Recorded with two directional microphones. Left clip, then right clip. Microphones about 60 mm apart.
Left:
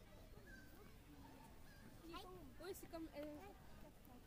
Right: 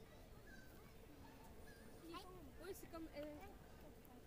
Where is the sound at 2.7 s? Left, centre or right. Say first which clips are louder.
Left 1 dB; left.